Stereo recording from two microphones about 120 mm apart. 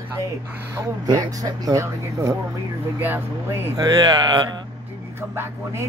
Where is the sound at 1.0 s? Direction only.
30° right (ahead or behind).